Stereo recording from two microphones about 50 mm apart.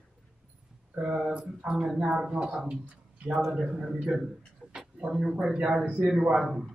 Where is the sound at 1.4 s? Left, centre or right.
Right.